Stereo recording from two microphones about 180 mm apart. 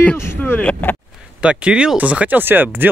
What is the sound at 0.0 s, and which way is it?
Vehicle, 10° left (ahead or behind).